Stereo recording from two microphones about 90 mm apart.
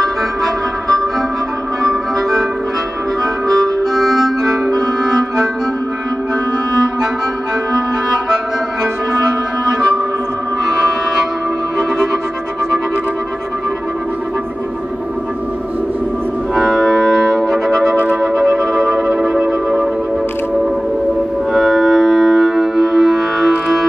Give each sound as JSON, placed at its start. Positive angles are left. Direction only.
{"t": 0.0, "sound": "music", "side_deg": 5}
{"t": 3.4, "sound": "harmonica", "side_deg": 5}
{"t": 4.6, "sound": "music", "side_deg": -40}
{"t": 16.5, "sound": "music", "side_deg": 0}
{"t": 21.5, "sound": "music", "side_deg": 0}